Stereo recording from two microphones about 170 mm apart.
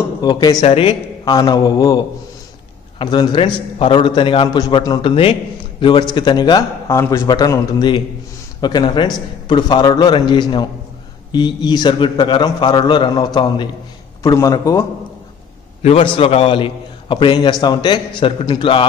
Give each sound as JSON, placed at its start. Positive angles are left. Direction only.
{"t": 0.2, "sound": "a man's voice", "side_deg": 25}
{"t": 15.8, "sound": "a man's voice", "side_deg": 35}